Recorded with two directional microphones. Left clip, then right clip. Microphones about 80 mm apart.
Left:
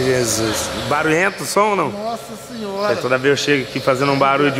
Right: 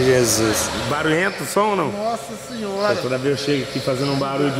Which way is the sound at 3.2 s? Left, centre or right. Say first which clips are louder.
Left 5 dB; left.